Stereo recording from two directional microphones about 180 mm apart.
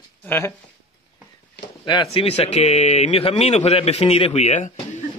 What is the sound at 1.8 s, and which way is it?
Speech, 25° left (ahead or behind).